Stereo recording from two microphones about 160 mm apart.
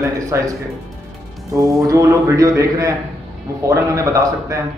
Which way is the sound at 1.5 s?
20° right (ahead or behind).